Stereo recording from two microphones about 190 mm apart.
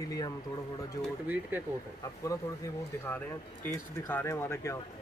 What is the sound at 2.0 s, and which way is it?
Speech, 15° left (ahead or behind).